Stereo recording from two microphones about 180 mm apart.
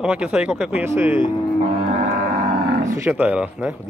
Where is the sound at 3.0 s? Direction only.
10° right (ahead or behind).